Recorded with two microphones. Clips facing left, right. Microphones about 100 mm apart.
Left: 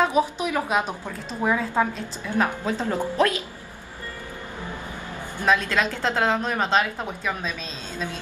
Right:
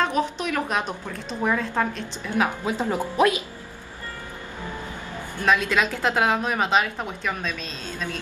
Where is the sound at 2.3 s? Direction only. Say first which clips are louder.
Even; 10° right (ahead or behind).